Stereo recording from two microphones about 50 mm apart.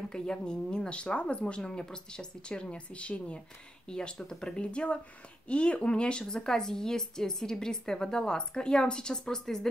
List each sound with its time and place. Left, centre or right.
0.1 s a woman's voice: centre